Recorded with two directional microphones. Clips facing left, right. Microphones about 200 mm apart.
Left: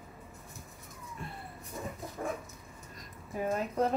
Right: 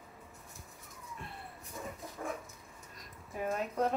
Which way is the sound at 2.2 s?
40° left (ahead or behind).